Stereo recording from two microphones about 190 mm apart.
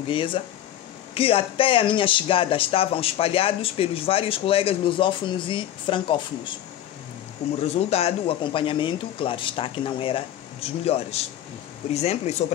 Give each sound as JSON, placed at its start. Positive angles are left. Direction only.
{"t": 0.1, "sound": "speech", "side_deg": 25}
{"t": 7.6, "sound": "speech", "side_deg": 35}